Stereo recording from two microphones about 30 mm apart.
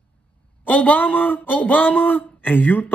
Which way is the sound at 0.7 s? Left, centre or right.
Left.